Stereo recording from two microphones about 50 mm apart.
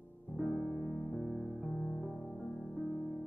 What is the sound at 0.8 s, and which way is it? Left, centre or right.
Music, centre.